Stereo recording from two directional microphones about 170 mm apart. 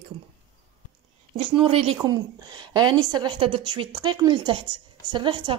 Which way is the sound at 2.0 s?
25° right (ahead or behind).